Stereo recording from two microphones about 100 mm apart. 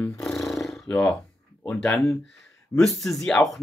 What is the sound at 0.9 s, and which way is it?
Speech, 10° left (ahead or behind).